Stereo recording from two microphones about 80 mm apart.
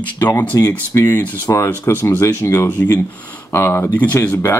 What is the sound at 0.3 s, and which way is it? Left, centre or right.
Speech, left.